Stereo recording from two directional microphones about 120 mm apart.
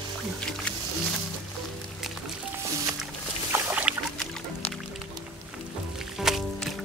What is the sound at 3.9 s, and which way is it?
Music, 5° right (ahead or behind).